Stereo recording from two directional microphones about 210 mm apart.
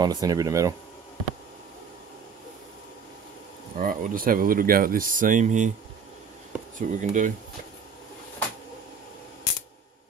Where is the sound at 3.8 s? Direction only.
45° right (ahead or behind).